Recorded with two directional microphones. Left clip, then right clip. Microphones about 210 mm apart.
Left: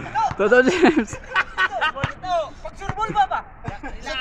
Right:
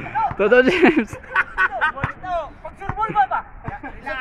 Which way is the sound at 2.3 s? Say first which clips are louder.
Left 2 dB; 5° left (ahead or behind).